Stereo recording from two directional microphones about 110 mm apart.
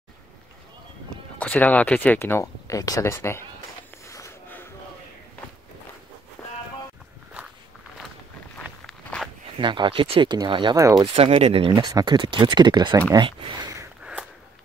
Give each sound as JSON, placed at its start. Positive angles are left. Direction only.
{"t": 1.4, "sound": "speech", "side_deg": 15}
{"t": 6.4, "sound": "a sound", "side_deg": 10}
{"t": 8.8, "sound": "walk", "side_deg": 5}
{"t": 9.6, "sound": "speech", "side_deg": -45}
{"t": 10.3, "sound": "speech", "side_deg": -45}
{"t": 10.8, "sound": "speech", "side_deg": -30}
{"t": 11.1, "sound": "speech", "side_deg": -65}
{"t": 11.9, "sound": "speech", "side_deg": -40}